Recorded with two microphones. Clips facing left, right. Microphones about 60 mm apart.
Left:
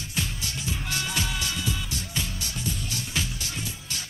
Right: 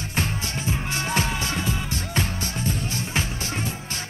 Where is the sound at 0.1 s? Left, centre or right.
Right.